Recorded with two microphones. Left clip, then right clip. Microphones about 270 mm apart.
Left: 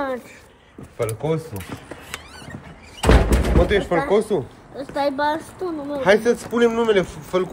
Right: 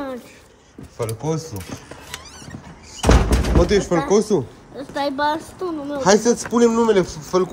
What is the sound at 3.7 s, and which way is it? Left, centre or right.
Speech, right.